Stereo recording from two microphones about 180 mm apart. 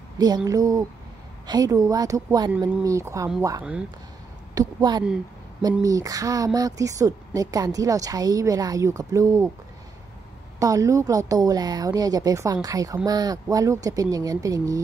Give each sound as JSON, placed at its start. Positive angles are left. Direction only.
{"t": 0.2, "sound": "speech", "side_deg": -20}
{"t": 4.6, "sound": "speech", "side_deg": -20}
{"t": 10.6, "sound": "speech", "side_deg": -20}